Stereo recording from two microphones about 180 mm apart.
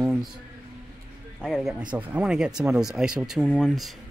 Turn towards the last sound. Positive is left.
turn(degrees=0)  # may be behind; listen again after turning